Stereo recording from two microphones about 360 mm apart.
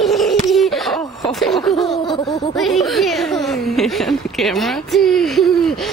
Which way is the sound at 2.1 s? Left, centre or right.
Centre.